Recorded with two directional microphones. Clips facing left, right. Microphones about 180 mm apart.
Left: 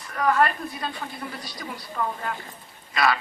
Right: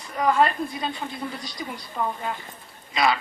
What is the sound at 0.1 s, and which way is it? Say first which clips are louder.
A woman's voice: right 1 dB; 20° right (ahead or behind).